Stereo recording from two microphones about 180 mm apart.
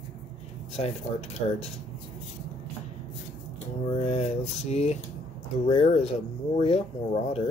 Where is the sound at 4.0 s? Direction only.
35° left (ahead or behind).